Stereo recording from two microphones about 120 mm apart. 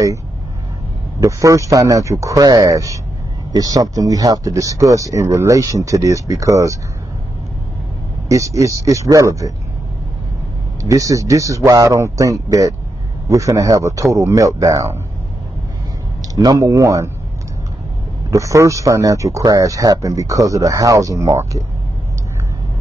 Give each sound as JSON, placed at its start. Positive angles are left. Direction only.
{"t": 1.2, "sound": "speech", "side_deg": -25}
{"t": 8.3, "sound": "speech", "side_deg": -25}
{"t": 10.8, "sound": "speech", "side_deg": -30}
{"t": 16.2, "sound": "speech", "side_deg": -30}
{"t": 18.3, "sound": "speech", "side_deg": -25}